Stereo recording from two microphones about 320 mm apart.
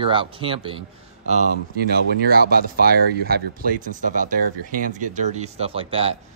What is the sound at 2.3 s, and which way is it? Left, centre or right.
Speech, right.